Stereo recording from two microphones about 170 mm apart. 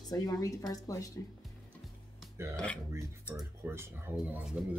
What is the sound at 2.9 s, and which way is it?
Speech, 15° right (ahead or behind).